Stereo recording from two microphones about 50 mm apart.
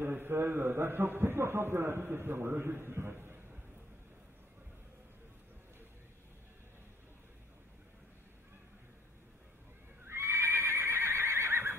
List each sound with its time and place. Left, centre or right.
0.0 s a man's voice: right
10.0 s neigh: right